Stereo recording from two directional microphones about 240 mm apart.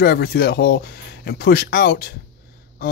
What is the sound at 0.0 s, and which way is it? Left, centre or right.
Speech, left.